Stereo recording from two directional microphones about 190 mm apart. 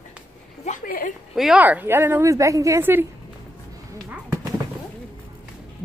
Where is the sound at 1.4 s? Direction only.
5° right (ahead or behind).